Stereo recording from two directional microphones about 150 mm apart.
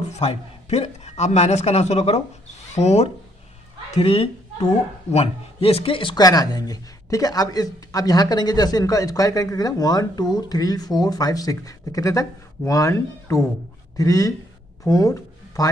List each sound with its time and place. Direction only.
0.2 s a man's voice: 45° left (ahead or behind); by 15.7 s 25° left (ahead or behind)